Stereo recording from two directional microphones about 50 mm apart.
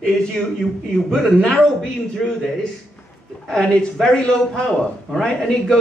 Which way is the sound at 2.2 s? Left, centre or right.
Centre.